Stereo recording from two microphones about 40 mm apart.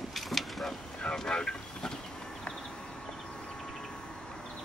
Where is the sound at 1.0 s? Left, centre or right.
Centre.